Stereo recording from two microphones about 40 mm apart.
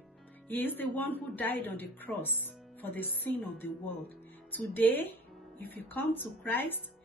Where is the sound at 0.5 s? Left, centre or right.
Left.